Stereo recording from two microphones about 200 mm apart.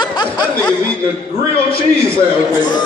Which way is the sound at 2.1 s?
20° left (ahead or behind).